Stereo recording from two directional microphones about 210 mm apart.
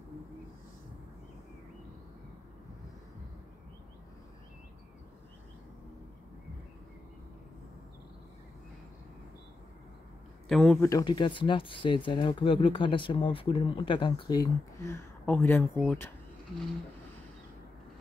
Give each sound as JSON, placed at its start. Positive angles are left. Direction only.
{"t": 10.5, "sound": "speech", "side_deg": 5}
{"t": 10.9, "sound": "speech", "side_deg": 20}